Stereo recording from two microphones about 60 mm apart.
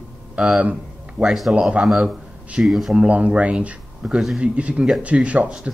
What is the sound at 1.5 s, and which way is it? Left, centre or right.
Speech, centre.